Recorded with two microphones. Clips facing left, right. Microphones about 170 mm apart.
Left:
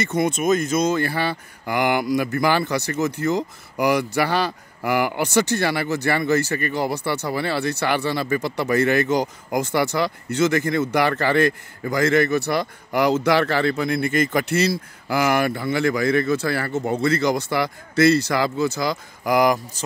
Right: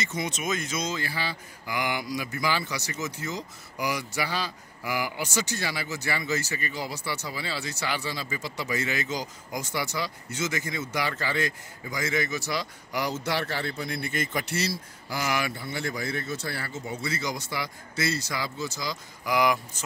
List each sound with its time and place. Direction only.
0.0 s speech: 60° left (ahead or behind)
13.0 s speech: 90° left
16.6 s speech: 65° left (ahead or behind); by 19.8 s 45° left (ahead or behind)